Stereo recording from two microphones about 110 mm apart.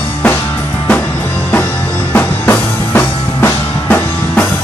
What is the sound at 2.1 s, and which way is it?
Music, 15° left (ahead or behind).